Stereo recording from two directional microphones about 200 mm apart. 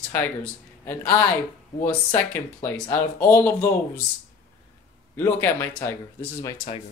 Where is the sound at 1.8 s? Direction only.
10° left (ahead or behind).